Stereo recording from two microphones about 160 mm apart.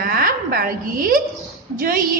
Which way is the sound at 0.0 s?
65° right (ahead or behind).